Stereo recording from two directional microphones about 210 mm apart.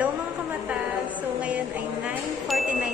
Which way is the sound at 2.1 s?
Centre (ahead or behind).